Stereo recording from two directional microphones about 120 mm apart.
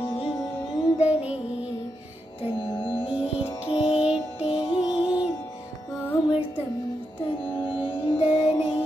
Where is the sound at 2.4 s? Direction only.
45° left (ahead or behind).